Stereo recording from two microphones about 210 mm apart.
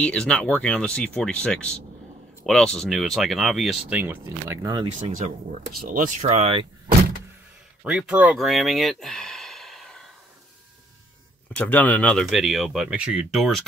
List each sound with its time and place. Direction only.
0.0 s speech: 5° left (ahead or behind); by 4.8 s 15° right (ahead or behind)
4.8 s speech: 35° right (ahead or behind)
7.8 s speech: 5° right (ahead or behind)
11.5 s speech: 5° left (ahead or behind)